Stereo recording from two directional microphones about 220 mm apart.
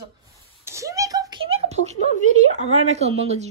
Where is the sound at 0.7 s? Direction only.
15° right (ahead or behind); by 2.0 s 30° right (ahead or behind).